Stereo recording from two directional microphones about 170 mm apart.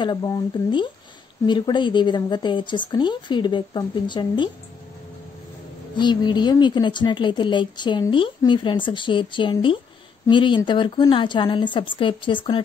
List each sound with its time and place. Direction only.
0.0 s a woman's voice: 25° left (ahead or behind)
5.9 s a woman's voice: 25° left (ahead or behind)